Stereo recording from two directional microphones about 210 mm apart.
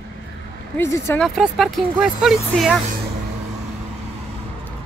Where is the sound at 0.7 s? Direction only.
15° left (ahead or behind).